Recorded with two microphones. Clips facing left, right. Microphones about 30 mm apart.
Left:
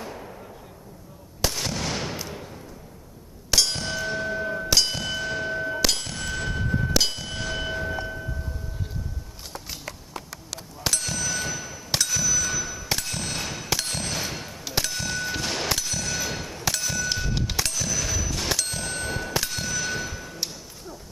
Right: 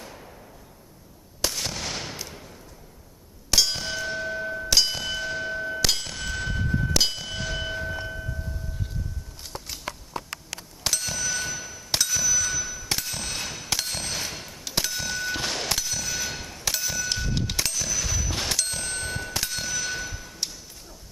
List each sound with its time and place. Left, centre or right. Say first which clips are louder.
0.0 s a sound: left 6 dB; centre
1.4 s fireworks: left 2 dB; centre
3.4 s clang: even; centre
10.8 s bicycle bell: left 1 dB; centre
15.5 s a sound: left 1 dB; centre
18.4 s bicycle bell: left 1 dB; centre